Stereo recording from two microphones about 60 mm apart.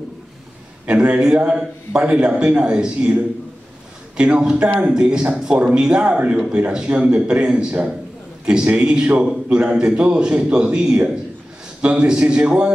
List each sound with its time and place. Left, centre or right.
0.8 s a man's voice: centre